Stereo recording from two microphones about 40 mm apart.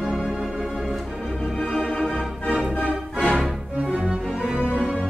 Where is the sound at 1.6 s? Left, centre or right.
Centre.